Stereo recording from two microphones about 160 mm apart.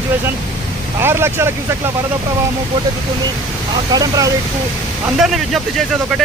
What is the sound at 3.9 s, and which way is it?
Speech, 25° right (ahead or behind).